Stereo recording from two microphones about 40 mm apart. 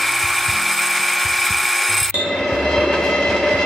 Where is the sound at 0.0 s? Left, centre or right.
Centre.